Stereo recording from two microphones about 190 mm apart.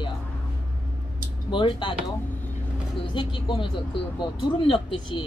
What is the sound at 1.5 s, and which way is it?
Speech, 25° left (ahead or behind).